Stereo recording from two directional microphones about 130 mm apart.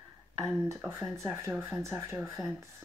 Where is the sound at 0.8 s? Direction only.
20° right (ahead or behind).